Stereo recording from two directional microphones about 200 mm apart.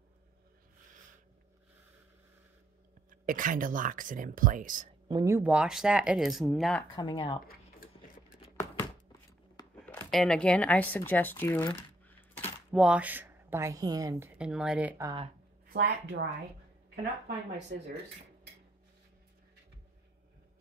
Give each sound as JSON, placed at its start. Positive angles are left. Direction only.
{"t": 3.1, "sound": "speech", "side_deg": -40}
{"t": 5.0, "sound": "speech", "side_deg": -15}
{"t": 7.0, "sound": "speech", "side_deg": 25}
{"t": 9.6, "sound": "a sound", "side_deg": 20}
{"t": 10.1, "sound": "speech", "side_deg": 5}
{"t": 12.7, "sound": "a woman's voice", "side_deg": -5}
{"t": 14.4, "sound": "speech", "side_deg": -5}
{"t": 15.7, "sound": "speech", "side_deg": -55}